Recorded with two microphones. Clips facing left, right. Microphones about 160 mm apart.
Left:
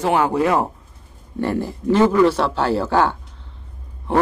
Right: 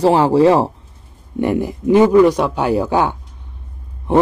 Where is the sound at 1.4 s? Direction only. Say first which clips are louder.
Right 4 dB; 15° right (ahead or behind).